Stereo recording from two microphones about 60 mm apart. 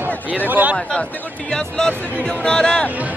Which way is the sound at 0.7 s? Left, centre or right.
Centre.